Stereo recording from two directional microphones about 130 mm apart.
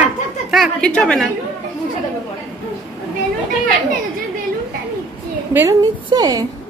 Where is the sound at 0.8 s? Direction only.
5° left (ahead or behind).